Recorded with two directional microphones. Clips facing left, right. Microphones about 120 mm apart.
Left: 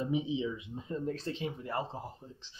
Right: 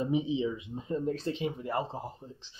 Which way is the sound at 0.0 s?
25° right (ahead or behind).